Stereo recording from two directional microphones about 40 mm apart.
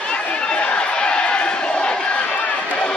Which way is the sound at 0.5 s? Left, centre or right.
Left.